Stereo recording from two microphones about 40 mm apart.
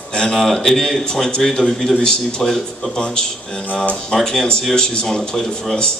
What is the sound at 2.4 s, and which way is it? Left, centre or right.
Speech, centre.